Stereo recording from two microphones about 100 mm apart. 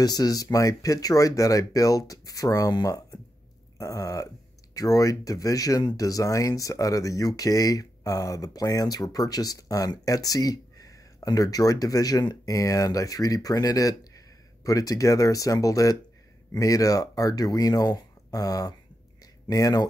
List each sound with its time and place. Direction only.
0.0 s speech: 40° left (ahead or behind)